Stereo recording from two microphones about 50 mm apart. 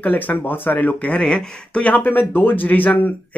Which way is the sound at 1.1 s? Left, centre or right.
Centre.